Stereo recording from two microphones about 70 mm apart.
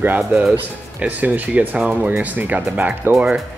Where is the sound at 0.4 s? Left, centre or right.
Centre.